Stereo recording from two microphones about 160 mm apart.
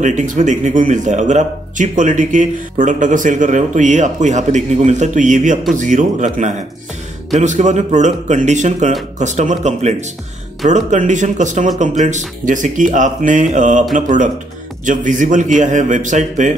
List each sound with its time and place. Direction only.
0.0 s speech: 50° right (ahead or behind)